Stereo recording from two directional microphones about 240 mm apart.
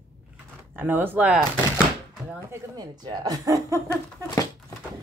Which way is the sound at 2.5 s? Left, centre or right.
Centre.